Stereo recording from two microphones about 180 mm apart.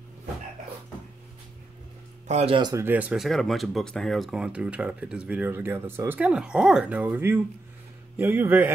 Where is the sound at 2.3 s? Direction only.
35° right (ahead or behind).